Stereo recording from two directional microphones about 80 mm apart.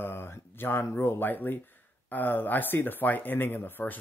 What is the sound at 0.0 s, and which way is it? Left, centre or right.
Speech, left.